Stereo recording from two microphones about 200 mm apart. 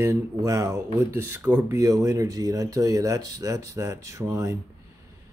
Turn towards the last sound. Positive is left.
turn(degrees=-15)  # may be behind; listen again after turning